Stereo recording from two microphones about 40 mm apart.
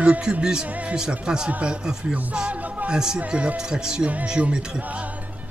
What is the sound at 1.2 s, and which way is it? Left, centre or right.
Speech, right.